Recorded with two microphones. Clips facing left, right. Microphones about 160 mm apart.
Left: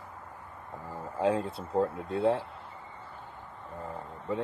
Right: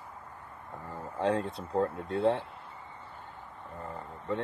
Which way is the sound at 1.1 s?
5° left (ahead or behind).